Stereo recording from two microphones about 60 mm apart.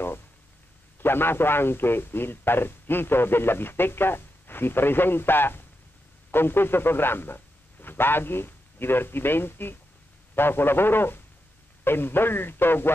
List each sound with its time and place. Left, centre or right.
1.0 s a man's voice: left